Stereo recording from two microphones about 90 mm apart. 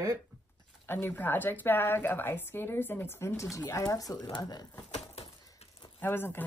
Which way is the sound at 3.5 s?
40° left (ahead or behind).